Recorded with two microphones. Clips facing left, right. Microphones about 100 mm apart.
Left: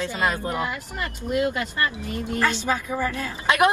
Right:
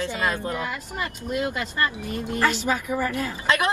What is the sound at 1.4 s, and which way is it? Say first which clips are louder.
Speech: left 1 dB; 20° right (ahead or behind).